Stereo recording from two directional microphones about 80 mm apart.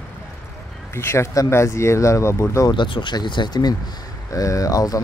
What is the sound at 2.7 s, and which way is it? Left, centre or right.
Speech, left.